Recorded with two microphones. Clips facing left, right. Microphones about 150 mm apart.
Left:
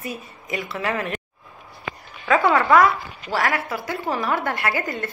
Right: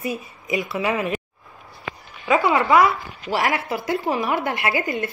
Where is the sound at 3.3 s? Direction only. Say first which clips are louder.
Right 1 dB; 20° right (ahead or behind).